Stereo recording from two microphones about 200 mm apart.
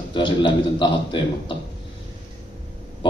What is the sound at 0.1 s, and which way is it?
A man's voice, 25° left (ahead or behind).